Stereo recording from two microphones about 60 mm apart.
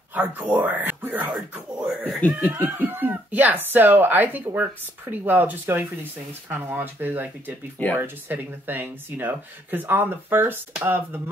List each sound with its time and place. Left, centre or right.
0.1 s speech: right
1.3 s speech: centre
2.4 s speech: right